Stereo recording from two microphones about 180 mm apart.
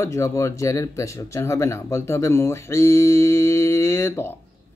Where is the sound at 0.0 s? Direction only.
15° left (ahead or behind).